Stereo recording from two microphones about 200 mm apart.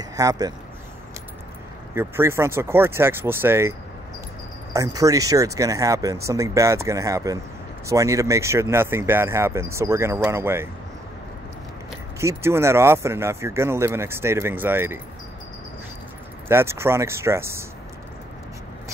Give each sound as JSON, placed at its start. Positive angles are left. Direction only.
{"t": 0.1, "sound": "speech", "side_deg": -20}
{"t": 2.0, "sound": "speech", "side_deg": -10}
{"t": 4.7, "sound": "speech", "side_deg": -15}
{"t": 12.2, "sound": "speech", "side_deg": -15}
{"t": 16.4, "sound": "speech", "side_deg": -10}